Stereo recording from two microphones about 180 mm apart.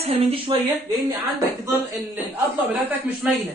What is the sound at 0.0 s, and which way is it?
Speech, 30° right (ahead or behind).